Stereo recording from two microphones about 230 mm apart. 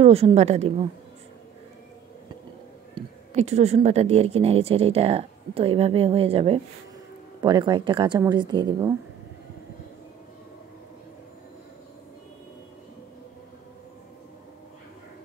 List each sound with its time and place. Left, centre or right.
0.0 s a woman's voice: right
2.9 s a woman's voice: right